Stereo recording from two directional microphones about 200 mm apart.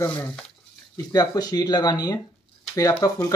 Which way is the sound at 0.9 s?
20° left (ahead or behind).